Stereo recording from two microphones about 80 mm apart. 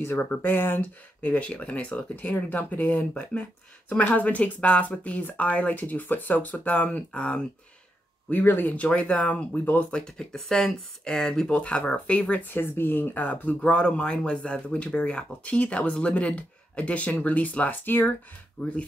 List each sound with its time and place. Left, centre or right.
0.1 s speech: left
8.3 s speech: left
18.6 s speech: centre